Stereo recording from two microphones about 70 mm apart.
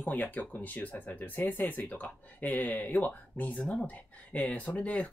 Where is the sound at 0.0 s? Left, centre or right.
Left.